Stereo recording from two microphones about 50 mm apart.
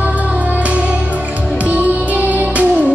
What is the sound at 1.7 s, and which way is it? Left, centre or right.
Music, right.